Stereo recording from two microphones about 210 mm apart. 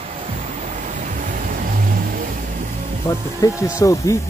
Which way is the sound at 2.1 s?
40° right (ahead or behind).